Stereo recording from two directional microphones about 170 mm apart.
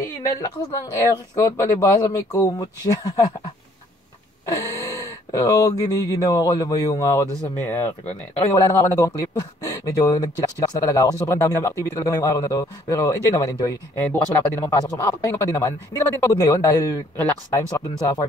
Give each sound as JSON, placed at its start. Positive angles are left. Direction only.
{"t": 0.0, "sound": "a woman's voice", "side_deg": 20}
{"t": 4.5, "sound": "a man's voice", "side_deg": 20}